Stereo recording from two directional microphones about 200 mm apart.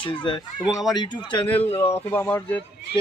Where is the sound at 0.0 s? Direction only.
25° left (ahead or behind); by 2.6 s 10° left (ahead or behind).